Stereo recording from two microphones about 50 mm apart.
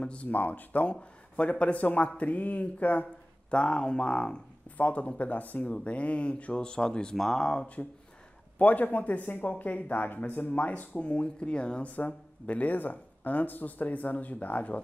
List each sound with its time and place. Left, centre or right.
0.0 s a man's voice: left
0.3 s a man's voice: left; by 7.6 s centre
8.5 s a man's voice: left; by 11.9 s centre
11.9 s speech: left